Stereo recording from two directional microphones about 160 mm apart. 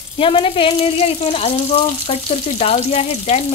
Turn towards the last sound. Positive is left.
turn(degrees=40)  # may be behind; listen again after turning